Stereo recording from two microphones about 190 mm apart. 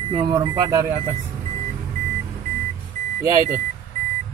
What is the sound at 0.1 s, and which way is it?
Speech, 25° right (ahead or behind).